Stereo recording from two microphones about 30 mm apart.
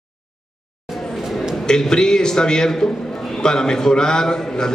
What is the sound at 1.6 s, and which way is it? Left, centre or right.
A man's voice, left.